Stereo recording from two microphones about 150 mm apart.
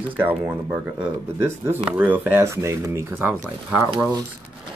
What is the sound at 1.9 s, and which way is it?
Speech, 10° right (ahead or behind).